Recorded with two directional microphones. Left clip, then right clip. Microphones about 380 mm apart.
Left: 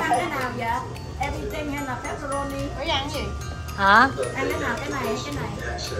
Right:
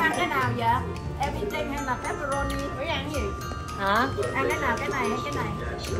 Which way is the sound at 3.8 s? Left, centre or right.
Left.